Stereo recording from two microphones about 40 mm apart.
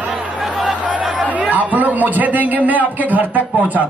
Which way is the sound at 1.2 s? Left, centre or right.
Right.